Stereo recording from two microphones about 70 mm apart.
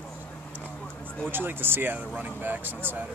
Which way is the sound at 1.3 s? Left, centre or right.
Right.